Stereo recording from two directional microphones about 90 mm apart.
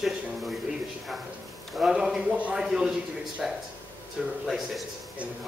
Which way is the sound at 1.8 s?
5° right (ahead or behind).